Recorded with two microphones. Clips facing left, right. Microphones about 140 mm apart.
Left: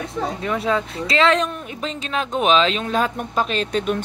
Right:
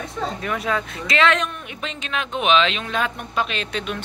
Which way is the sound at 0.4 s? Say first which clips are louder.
Left 4 dB; 25° left (ahead or behind).